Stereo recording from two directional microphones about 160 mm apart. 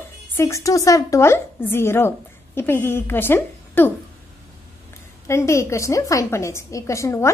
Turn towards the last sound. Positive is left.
turn(degrees=15)  # may be behind; listen again after turning